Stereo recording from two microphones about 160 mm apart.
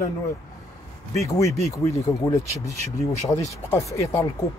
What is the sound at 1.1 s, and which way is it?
Speech, 20° left (ahead or behind).